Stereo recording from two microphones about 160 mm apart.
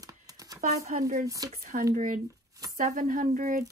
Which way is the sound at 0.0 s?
25° right (ahead or behind).